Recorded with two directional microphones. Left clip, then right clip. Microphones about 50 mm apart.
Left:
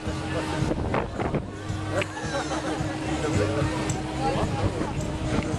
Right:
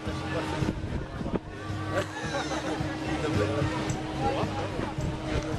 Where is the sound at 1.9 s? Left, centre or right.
Right.